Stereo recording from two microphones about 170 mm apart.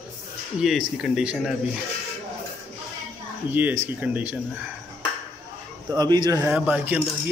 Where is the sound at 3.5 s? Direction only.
10° right (ahead or behind).